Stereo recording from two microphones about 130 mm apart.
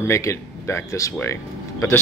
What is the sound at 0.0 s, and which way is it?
Speech, 20° left (ahead or behind).